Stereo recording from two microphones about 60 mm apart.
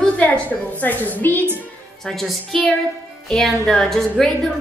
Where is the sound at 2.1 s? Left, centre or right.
Centre.